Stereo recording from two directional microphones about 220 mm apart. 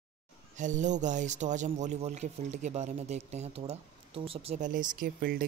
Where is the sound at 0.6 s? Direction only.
35° right (ahead or behind).